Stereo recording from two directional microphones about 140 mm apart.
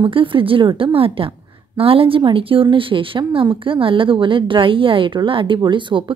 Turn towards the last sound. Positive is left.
turn(degrees=-35)  # may be behind; listen again after turning